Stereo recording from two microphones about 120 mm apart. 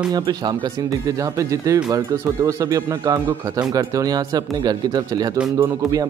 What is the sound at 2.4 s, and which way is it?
A man's voice, 30° right (ahead or behind).